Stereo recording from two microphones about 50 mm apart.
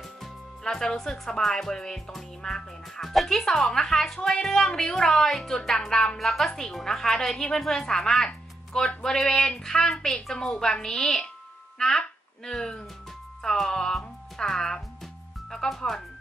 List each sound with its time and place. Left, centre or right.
0.2 s speech: centre
11.8 s a sound: centre
13.4 s music: centre
15.5 s speech: centre